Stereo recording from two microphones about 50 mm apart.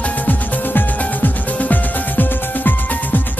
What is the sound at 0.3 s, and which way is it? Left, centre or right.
Music, left.